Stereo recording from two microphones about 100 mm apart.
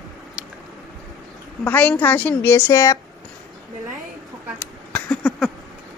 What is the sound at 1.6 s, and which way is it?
A woman's voice, 15° left (ahead or behind).